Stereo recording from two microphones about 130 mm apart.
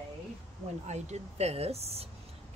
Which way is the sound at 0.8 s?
60° right (ahead or behind).